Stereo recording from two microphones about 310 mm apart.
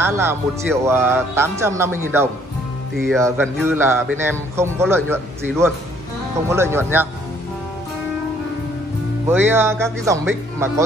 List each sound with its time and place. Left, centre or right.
0.0 s a man's voice: centre
3.1 s a man's voice: centre
9.3 s a man's voice: centre